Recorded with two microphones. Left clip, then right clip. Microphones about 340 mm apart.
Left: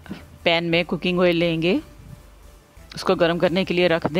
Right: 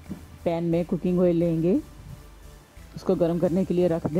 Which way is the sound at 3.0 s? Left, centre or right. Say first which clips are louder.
Left 5 dB; left.